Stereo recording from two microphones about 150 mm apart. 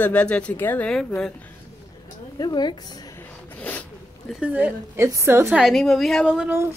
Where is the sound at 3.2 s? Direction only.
10° left (ahead or behind).